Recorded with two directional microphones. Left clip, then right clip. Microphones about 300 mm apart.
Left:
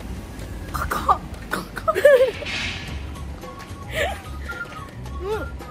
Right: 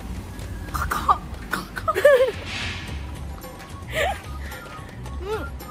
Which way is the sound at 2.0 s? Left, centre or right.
Centre.